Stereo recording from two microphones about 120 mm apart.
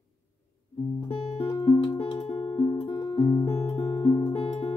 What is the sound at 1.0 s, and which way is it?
Guitar, 50° left (ahead or behind).